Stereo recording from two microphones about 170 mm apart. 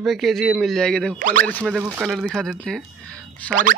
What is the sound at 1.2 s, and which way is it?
Speech, 50° right (ahead or behind).